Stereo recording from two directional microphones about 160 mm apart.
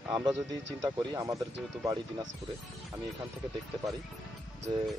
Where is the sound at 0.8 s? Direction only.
25° right (ahead or behind).